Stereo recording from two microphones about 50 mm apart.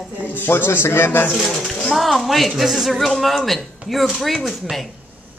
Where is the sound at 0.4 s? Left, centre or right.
Left.